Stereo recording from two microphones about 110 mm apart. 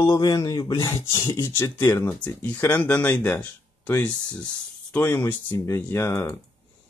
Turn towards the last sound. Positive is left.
turn(degrees=25)  # may be behind; listen again after turning